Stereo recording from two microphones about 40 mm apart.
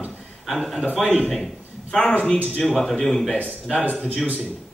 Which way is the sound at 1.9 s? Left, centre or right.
Centre.